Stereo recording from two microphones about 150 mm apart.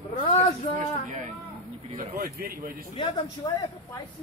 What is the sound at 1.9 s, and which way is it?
Speech, 80° right.